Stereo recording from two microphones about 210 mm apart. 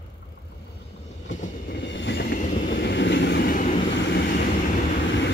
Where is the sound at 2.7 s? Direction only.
55° left (ahead or behind); by 3.8 s 40° left (ahead or behind).